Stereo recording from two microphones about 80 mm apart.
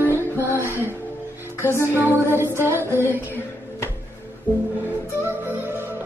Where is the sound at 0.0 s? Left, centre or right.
Right.